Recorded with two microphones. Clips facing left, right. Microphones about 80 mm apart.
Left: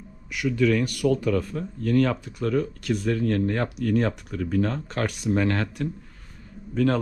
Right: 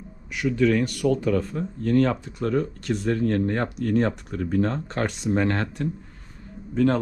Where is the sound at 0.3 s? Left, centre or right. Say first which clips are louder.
Right 1 dB; right.